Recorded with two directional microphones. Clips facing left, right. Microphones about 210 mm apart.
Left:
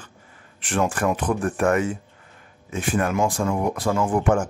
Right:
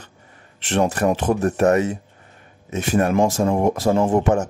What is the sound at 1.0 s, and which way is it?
Speech, 35° right (ahead or behind).